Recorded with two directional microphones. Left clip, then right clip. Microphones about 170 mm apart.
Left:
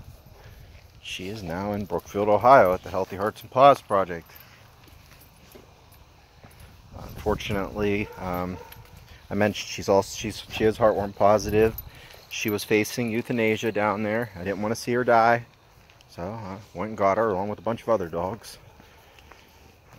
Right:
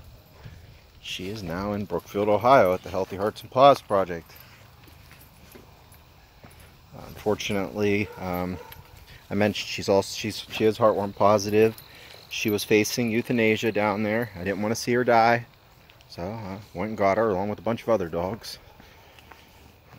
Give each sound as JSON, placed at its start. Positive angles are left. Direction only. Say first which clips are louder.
{"t": 1.4, "sound": "speech", "louder": "left 1 dB", "side_deg": -5}
{"t": 7.0, "sound": "speech", "louder": "right 1 dB", "side_deg": -10}
{"t": 9.8, "sound": "speech", "louder": "left 1 dB", "side_deg": -25}
{"t": 10.4, "sound": "speech", "louder": "even", "side_deg": -10}
{"t": 11.1, "sound": "speech", "louder": "even", "side_deg": -10}
{"t": 17.3, "sound": "speech", "louder": "even", "side_deg": -15}